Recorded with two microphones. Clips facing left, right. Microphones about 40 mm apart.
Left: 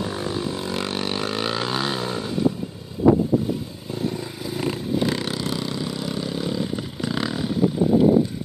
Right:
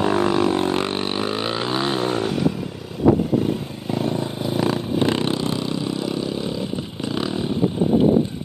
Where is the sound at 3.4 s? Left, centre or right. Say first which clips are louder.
Right 4 dB; right.